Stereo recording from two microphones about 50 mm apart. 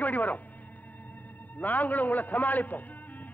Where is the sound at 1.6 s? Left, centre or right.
Left.